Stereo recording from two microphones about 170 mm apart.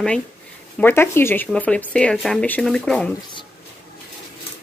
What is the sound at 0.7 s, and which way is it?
Speech, 15° left (ahead or behind).